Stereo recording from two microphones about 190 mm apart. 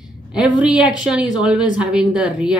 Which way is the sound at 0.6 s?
5° right (ahead or behind).